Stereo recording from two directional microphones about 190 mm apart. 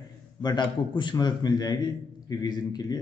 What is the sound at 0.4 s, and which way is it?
A man's voice, 25° left (ahead or behind).